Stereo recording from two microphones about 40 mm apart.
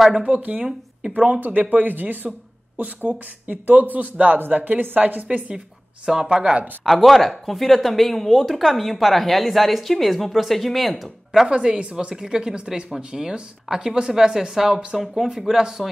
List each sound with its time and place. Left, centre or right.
0.1 s a woman's voice: right
3.1 s a woman's voice: right
6.2 s speech: right
6.8 s speech: centre
11.4 s speech: right